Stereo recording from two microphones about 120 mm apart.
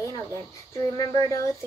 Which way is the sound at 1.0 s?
30° left (ahead or behind).